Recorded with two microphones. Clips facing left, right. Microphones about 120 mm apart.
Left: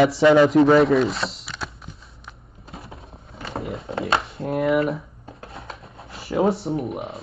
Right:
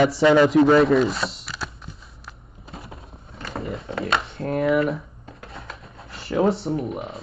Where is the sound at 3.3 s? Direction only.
25° left (ahead or behind).